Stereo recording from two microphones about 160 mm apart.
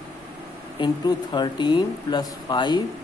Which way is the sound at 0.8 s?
30° left (ahead or behind).